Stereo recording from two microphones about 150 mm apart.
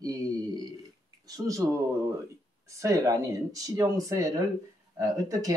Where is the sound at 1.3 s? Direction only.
20° right (ahead or behind).